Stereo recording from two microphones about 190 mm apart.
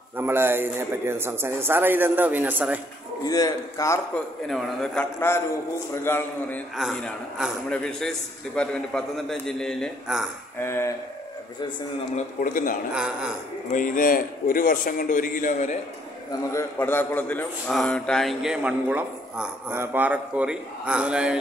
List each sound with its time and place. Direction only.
0.2 s a man's voice: 10° right (ahead or behind)
3.3 s a man's voice: 20° left (ahead or behind)
4.5 s a man's voice: centre (ahead or behind)
5.3 s a man's voice: 10° left (ahead or behind)
6.8 s a man's voice: centre (ahead or behind)
10.6 s a man's voice: 15° left (ahead or behind)
12.4 s a man's voice: 45° left (ahead or behind)
12.9 s a man's voice: 5° right (ahead or behind)
13.7 s a man's voice: 45° left (ahead or behind)
16.3 s a man's voice: 15° left (ahead or behind); by 21.4 s 5° right (ahead or behind)